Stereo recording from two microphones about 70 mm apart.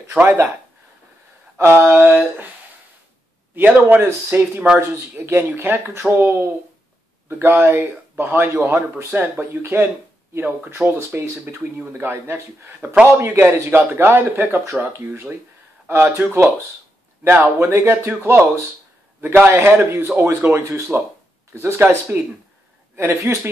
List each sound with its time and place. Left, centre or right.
0.1 s speech: right
1.6 s speech: right
1.9 s speech: right
3.5 s speech: right
22.9 s speech: right